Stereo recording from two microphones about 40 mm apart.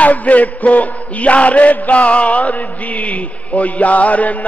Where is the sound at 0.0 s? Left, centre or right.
Left.